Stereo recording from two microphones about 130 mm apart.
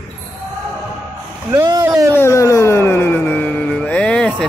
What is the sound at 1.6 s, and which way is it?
Speech, 25° right (ahead or behind).